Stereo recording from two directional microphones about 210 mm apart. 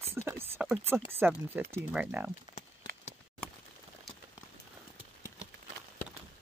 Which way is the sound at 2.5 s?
20° right (ahead or behind).